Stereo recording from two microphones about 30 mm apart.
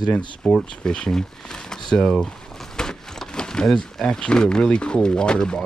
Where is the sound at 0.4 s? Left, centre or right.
Left.